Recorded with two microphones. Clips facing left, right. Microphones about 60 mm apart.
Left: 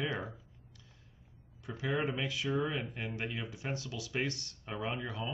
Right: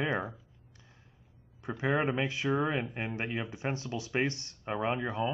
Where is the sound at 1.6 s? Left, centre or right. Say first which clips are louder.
Right 5 dB; right.